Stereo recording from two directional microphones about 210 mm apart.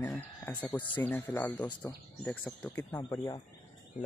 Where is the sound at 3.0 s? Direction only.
20° left (ahead or behind).